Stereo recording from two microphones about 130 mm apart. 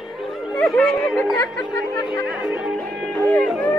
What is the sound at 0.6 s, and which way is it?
Speech, 5° left (ahead or behind).